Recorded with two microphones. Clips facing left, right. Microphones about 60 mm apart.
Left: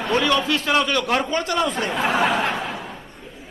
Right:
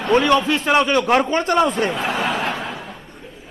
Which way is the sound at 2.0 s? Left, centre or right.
Centre.